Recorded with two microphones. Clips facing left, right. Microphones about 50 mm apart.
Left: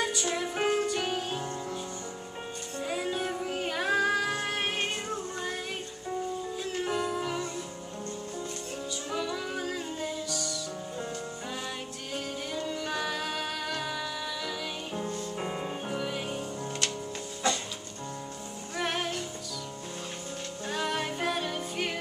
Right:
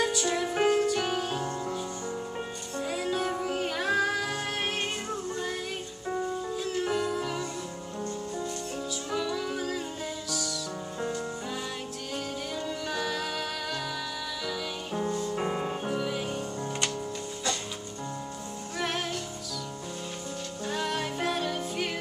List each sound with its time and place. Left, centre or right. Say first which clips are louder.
0.0 s music: right 3 dB; centre
2.8 s music: right 2 dB; centre
6.6 s music: right 2 dB; centre
9.1 s music: right 2 dB; centre
12.5 s music: left 1 dB; centre
15.0 s music: right 4 dB; centre
15.3 s music: right 4 dB; centre
18.8 s music: left 1 dB; centre
20.6 s music: even; centre